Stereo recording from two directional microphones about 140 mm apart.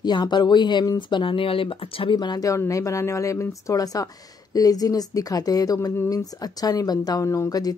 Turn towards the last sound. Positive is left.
turn(degrees=25)  # may be behind; listen again after turning